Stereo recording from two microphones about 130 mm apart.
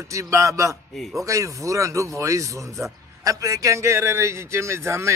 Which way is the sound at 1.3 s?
25° right (ahead or behind).